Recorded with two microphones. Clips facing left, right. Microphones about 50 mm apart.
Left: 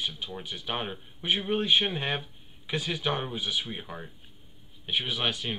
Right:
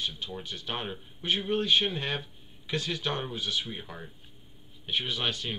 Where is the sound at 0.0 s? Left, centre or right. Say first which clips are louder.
Left 1 dB; centre.